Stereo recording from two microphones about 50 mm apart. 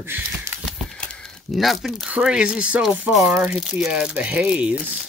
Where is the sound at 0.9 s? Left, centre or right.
Centre.